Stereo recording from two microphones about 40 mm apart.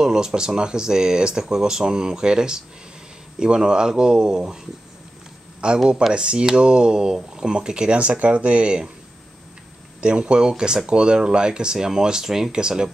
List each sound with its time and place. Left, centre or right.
0.0 s speech: centre
5.6 s speech: right
9.9 s speech: right; by 12.5 s centre
12.5 s speech: right